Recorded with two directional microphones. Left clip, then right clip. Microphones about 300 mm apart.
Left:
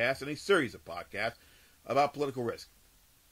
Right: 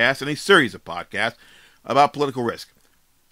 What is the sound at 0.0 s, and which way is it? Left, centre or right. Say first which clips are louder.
Speech: right 11 dB; right.